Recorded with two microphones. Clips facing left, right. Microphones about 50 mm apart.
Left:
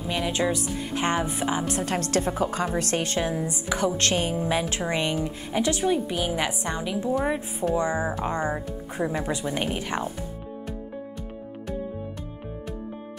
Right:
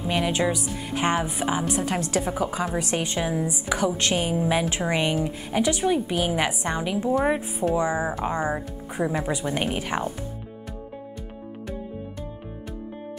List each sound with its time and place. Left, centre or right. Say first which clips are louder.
0.0 s a woman's voice: right 2 dB; centre
3.2 s a woman's voice: right 1 dB; centre
4.6 s a woman's voice: right 2 dB; right
5.9 s a woman's voice: right 2 dB; centre